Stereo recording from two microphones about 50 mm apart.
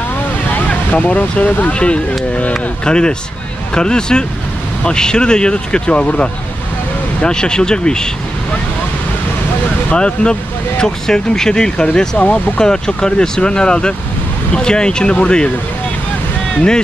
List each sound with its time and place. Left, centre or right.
0.7 s speech: left
9.9 s speech: centre